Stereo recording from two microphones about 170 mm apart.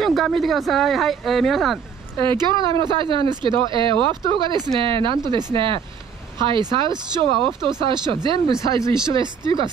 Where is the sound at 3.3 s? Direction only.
30° right (ahead or behind).